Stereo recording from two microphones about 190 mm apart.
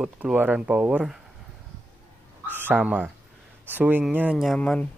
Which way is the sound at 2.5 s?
10° right (ahead or behind).